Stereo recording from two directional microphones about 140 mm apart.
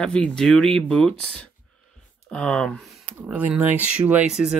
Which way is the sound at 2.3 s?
5° left (ahead or behind).